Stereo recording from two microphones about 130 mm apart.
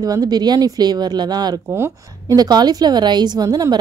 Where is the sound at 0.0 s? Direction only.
30° right (ahead or behind).